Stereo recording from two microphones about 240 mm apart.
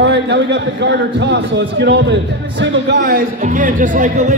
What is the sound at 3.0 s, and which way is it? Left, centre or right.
A man's voice, right.